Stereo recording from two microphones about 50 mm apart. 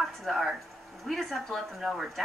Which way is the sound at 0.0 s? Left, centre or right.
Centre.